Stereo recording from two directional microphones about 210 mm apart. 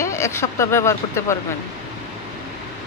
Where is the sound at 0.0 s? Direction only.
15° left (ahead or behind).